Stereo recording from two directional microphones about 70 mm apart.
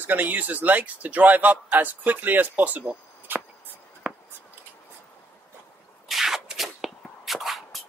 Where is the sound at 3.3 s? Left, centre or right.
Right.